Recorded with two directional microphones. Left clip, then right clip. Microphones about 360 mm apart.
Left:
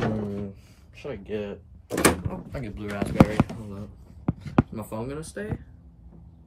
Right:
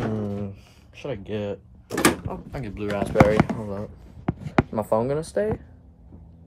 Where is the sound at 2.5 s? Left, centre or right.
Centre.